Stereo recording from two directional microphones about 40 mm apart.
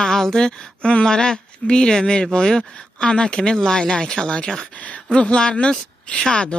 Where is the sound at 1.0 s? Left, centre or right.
Centre.